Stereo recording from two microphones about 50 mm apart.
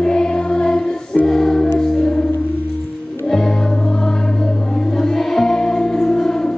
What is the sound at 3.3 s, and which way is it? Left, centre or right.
Music, centre.